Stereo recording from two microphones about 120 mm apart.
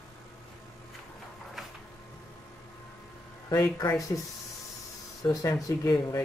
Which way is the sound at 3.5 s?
30° left (ahead or behind).